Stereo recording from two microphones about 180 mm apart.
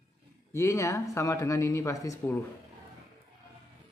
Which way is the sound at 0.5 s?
15° left (ahead or behind).